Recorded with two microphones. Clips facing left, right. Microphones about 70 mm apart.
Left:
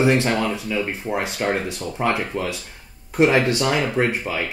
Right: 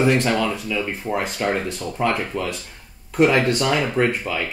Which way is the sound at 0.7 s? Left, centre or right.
Left.